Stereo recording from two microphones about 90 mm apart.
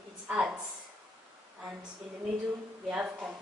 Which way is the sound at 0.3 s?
15° right (ahead or behind).